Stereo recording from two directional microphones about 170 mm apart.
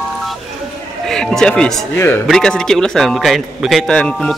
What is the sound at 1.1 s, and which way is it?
Music, 5° left (ahead or behind).